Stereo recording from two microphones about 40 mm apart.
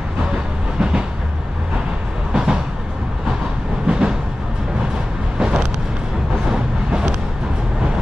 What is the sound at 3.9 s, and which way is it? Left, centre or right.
Train, right.